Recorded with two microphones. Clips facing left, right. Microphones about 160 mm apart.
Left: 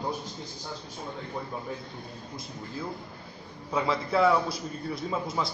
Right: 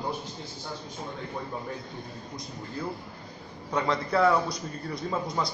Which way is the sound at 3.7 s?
5° left (ahead or behind).